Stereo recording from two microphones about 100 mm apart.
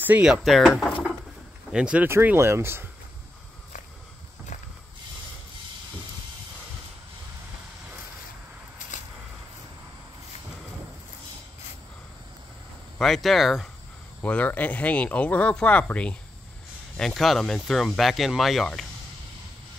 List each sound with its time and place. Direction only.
0.0 s speech: 10° right (ahead or behind)
1.7 s speech: 10° right (ahead or behind)
2.0 s speech: 25° right (ahead or behind)
13.0 s speech: centre (ahead or behind)
14.2 s speech: 15° left (ahead or behind)